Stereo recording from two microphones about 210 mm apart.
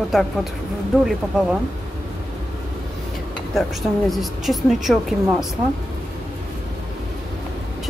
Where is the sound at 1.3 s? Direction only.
5° right (ahead or behind).